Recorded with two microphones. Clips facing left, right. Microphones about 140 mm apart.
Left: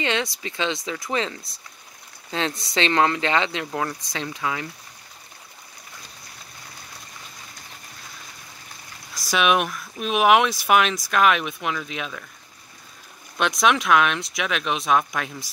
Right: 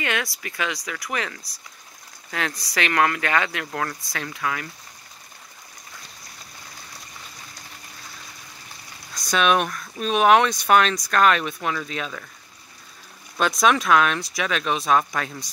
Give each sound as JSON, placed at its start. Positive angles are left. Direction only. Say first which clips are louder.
{"t": 0.0, "sound": "speech", "louder": "left 2 dB", "side_deg": 25}
{"t": 9.1, "sound": "speech", "louder": "even", "side_deg": 5}
{"t": 13.4, "sound": "speech", "louder": "right 1 dB", "side_deg": 0}